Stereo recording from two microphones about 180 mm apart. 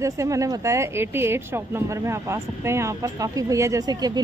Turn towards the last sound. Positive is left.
turn(degrees=-20)  # may be behind; listen again after turning